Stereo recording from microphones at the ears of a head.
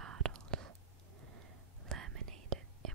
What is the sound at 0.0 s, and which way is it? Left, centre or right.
Whispering, right.